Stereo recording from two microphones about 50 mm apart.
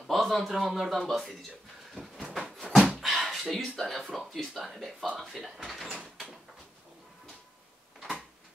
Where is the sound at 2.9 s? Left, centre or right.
Centre.